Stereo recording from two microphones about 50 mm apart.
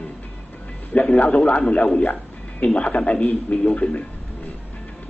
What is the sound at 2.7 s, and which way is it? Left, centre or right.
Speech, left.